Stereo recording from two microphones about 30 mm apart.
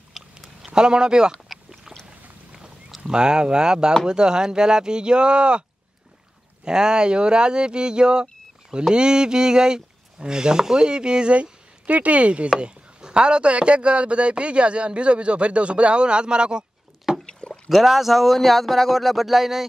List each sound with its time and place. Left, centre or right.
0.1 s a sound: centre
0.7 s speech: right
3.1 s speech: right
6.6 s speech: right
11.8 s speech: right
12.5 s speech: right
17.1 s rowboat: centre
17.4 s a sound: left
17.8 s speech: centre